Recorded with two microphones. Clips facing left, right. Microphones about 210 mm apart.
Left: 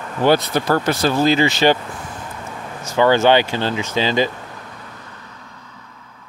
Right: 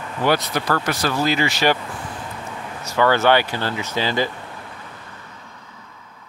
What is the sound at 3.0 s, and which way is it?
Speech, 20° left (ahead or behind).